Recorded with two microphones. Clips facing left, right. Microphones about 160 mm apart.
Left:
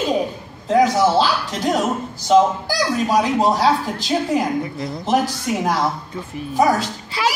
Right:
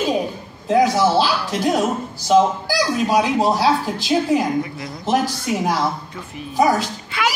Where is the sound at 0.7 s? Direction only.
5° right (ahead or behind).